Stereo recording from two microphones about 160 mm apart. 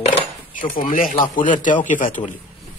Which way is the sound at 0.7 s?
60° left (ahead or behind).